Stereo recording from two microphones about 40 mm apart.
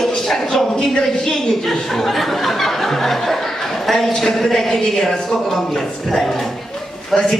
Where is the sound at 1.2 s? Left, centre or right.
Centre.